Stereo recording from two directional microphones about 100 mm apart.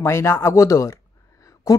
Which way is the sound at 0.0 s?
25° left (ahead or behind).